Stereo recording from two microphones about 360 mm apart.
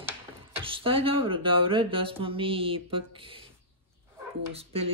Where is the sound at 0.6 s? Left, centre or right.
Centre.